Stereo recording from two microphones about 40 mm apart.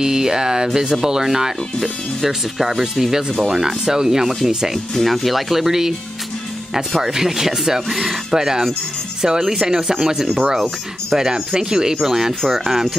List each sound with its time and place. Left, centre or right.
0.0 s speech: centre
4.9 s speech: centre
7.1 s speech: centre